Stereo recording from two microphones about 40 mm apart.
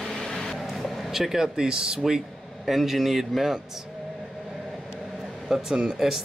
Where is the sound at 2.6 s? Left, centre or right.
Centre.